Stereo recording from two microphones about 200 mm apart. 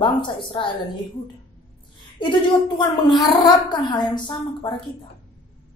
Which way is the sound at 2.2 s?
25° left (ahead or behind).